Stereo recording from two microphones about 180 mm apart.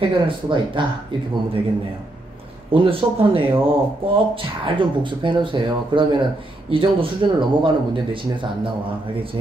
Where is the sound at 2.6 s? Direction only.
30° right (ahead or behind).